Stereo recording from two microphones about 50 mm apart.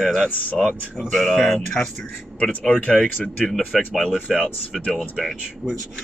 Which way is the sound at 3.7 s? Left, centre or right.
Centre.